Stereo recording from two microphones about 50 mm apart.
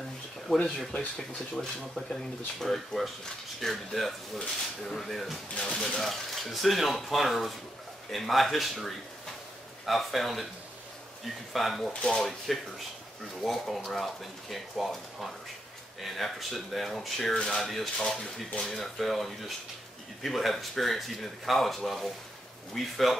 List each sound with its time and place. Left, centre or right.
0.7 s speech: centre
5.6 s speech: centre
5.9 s speech: centre
11.5 s speech: centre
11.9 s speech: left
12.2 s speech: centre